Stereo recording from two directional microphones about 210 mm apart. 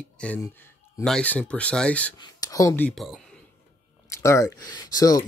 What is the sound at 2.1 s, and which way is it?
Speech, 15° left (ahead or behind).